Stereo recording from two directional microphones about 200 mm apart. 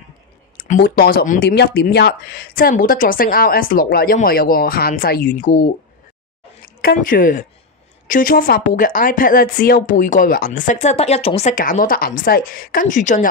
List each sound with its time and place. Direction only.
0.6 s speech: 50° left (ahead or behind)
6.8 s speech: 45° left (ahead or behind)